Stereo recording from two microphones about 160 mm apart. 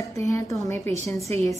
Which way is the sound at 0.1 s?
20° left (ahead or behind).